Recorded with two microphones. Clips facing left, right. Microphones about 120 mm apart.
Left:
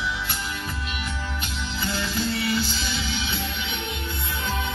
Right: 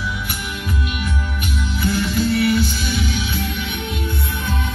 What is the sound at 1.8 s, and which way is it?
Music, 25° left (ahead or behind).